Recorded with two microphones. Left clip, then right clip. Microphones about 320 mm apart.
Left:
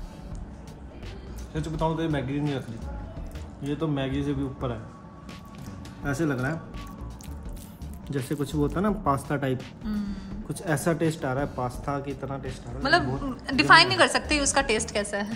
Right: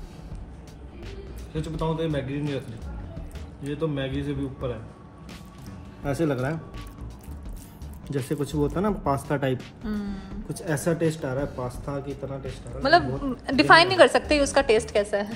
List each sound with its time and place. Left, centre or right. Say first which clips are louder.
2.0 s speech: even; centre
3.6 s a man's voice: even; centre
6.0 s speech: right 2 dB; centre
8.1 s speech: right 2 dB; centre